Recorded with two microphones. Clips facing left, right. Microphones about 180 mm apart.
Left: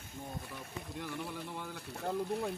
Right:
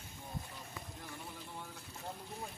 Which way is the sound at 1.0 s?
70° left (ahead or behind).